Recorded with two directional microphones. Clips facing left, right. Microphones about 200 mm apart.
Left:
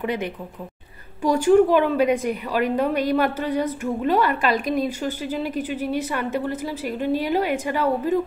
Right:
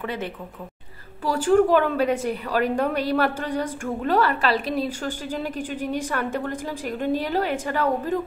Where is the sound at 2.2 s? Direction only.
35° right (ahead or behind).